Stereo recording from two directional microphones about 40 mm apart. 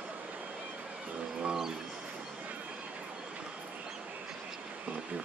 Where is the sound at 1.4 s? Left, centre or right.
Centre.